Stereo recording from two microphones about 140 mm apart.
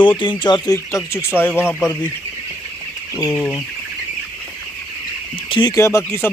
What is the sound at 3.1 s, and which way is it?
Speech, 25° left (ahead or behind).